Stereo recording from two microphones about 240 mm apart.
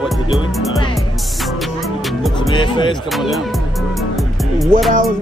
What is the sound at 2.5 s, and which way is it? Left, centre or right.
Speech, centre.